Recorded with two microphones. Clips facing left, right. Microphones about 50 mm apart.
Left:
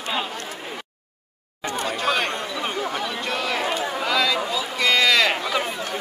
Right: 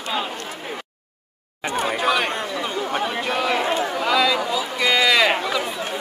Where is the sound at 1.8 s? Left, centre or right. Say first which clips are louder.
Right 3 dB; centre.